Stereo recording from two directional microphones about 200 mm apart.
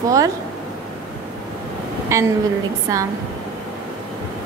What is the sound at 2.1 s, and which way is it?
Speech, 15° right (ahead or behind).